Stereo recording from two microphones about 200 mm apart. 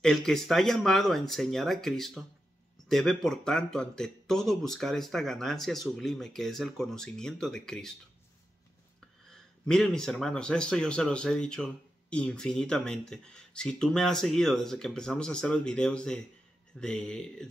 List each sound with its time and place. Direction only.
0.0 s speech: 5° left (ahead or behind)
9.3 s speech: centre (ahead or behind)